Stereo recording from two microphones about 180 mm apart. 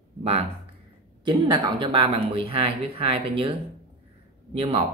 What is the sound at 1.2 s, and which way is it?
A man's voice, 25° right (ahead or behind).